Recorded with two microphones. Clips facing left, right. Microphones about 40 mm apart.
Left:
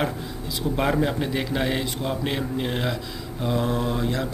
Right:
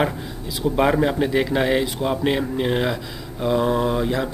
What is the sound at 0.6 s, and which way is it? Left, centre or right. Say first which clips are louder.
Speech: right 5 dB; centre.